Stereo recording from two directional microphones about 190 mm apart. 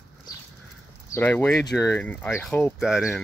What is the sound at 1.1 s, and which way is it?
Speech, 10° left (ahead or behind).